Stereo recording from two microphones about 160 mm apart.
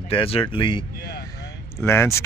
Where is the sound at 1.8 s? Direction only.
15° left (ahead or behind).